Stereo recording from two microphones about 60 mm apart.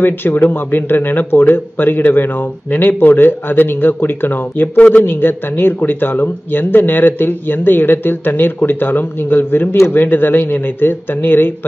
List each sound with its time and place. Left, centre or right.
0.0 s speech: left